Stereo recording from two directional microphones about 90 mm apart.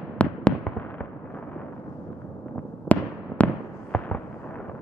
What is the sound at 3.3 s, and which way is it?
Fireworks, 40° left (ahead or behind).